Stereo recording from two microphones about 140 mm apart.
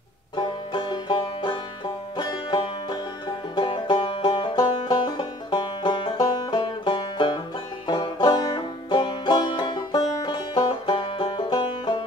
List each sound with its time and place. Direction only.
0.4 s banjo: 35° left (ahead or behind)
2.1 s music: 35° left (ahead or behind)